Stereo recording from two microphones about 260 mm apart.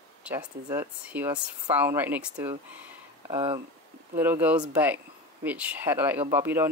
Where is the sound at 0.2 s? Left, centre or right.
Centre.